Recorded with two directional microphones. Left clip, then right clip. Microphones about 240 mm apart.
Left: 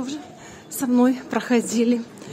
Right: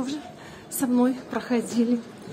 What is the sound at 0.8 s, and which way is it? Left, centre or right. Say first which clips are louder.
Speech: left 4 dB; left.